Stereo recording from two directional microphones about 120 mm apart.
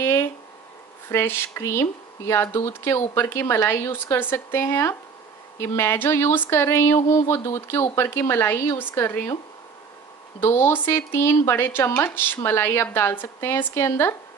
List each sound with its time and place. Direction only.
0.0 s a sound: 25° left (ahead or behind)
1.0 s speech: 20° left (ahead or behind)
10.4 s speech: 20° left (ahead or behind)